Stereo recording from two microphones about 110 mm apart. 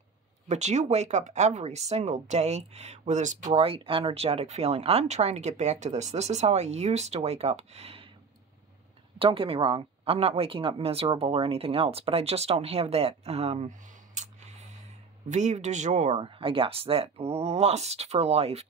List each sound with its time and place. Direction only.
0.5 s speech: 90° right; by 8.1 s 65° right (ahead or behind)
9.2 s a woman's voice: 55° right (ahead or behind); by 16.2 s 90° right
16.2 s speech: 55° right (ahead or behind); by 18.7 s 70° right (ahead or behind)